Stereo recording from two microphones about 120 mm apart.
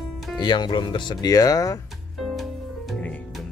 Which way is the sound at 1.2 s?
30° left (ahead or behind).